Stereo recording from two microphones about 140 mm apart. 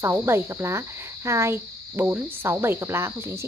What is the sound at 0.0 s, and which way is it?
Speech, 20° right (ahead or behind).